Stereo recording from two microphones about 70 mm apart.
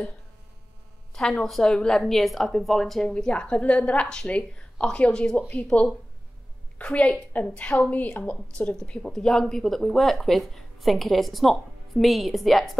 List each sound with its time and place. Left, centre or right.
1.4 s a woman's voice: centre